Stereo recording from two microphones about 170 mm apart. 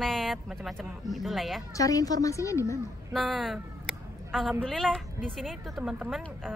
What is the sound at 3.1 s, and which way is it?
Speech, centre (ahead or behind).